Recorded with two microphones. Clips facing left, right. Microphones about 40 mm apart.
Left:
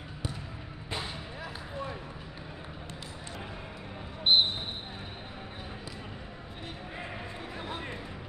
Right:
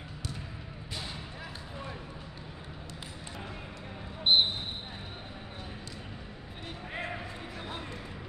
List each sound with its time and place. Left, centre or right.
4.2 s basketball bounce: centre